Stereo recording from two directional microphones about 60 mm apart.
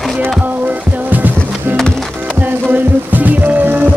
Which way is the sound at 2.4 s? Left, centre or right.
Right.